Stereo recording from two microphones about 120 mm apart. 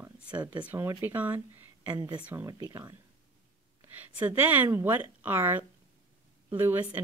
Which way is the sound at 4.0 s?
15° right (ahead or behind).